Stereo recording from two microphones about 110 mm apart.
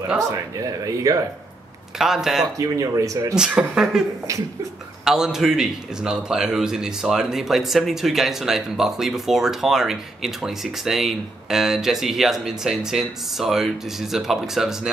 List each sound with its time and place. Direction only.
0.8 s speech: 30° right (ahead or behind)
2.0 s a man's voice: 5° right (ahead or behind)
2.5 s speech: 30° right (ahead or behind)
3.3 s speech: 5° right (ahead or behind)
5.0 s a man's voice: 5° right (ahead or behind)